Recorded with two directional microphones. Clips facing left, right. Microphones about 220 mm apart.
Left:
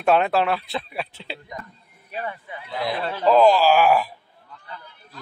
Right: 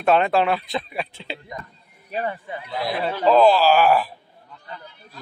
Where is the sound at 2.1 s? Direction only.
35° right (ahead or behind).